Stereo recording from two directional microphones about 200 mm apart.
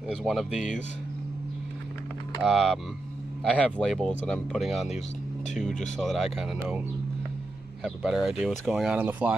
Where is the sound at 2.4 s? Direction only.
Centre (ahead or behind).